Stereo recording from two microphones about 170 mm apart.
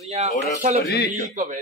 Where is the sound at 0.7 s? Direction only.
70° left (ahead or behind).